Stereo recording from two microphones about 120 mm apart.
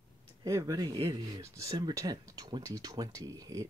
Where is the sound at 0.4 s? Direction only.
25° right (ahead or behind).